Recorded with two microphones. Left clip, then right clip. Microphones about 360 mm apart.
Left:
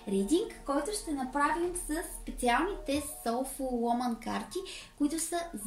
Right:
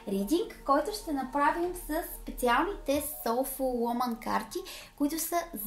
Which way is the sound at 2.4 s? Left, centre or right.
Centre.